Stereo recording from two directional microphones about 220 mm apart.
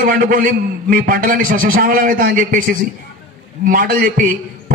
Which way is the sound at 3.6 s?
40° right (ahead or behind).